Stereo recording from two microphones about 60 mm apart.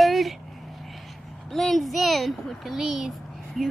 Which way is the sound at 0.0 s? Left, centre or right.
Centre.